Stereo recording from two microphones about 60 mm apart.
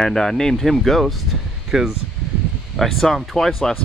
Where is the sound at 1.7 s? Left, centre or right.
Centre.